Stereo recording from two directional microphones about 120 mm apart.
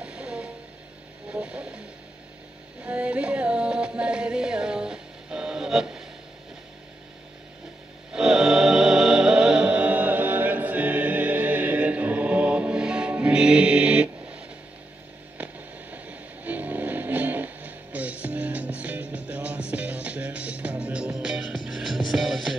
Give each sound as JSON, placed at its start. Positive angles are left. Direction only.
{"t": 0.0, "sound": "vehicle", "side_deg": -10}
{"t": 1.3, "sound": "speech", "side_deg": -10}
{"t": 2.8, "sound": "music", "side_deg": -10}
{"t": 8.1, "sound": "music", "side_deg": -5}
{"t": 15.3, "sound": "vehicle", "side_deg": -10}
{"t": 21.6, "sound": "music", "side_deg": -5}